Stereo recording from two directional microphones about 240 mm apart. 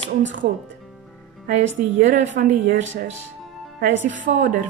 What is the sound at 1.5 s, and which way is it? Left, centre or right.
A woman's voice, right.